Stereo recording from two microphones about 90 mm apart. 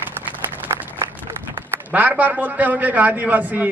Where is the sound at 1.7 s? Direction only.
20° right (ahead or behind).